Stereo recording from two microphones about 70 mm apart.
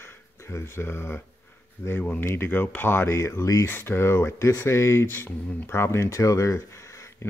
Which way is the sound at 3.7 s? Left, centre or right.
Left.